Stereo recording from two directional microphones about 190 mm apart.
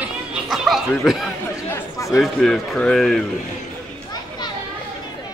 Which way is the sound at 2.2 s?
Centre (ahead or behind).